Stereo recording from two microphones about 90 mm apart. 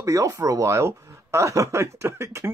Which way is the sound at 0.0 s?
40° right (ahead or behind).